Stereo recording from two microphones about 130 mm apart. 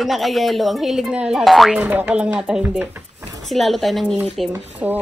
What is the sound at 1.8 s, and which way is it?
Speech, 15° right (ahead or behind).